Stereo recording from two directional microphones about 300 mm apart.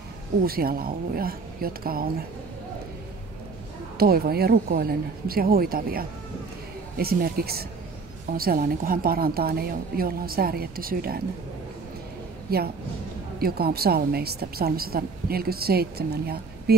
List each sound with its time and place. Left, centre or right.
0.5 s a woman's voice: right
4.0 s a woman's voice: right
12.4 s a woman's voice: right